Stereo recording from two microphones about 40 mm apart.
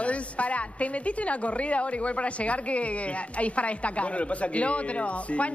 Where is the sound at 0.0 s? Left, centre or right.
Left.